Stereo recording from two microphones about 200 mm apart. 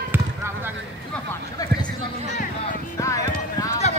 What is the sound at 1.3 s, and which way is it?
Speech, 10° left (ahead or behind).